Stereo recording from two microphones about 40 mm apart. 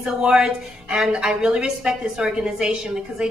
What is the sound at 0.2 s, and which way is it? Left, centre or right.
A woman's voice, right.